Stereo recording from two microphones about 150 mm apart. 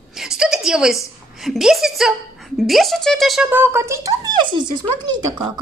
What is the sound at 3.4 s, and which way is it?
Speech, 15° right (ahead or behind).